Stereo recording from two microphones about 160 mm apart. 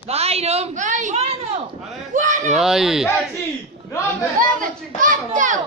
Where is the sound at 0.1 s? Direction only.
40° right (ahead or behind).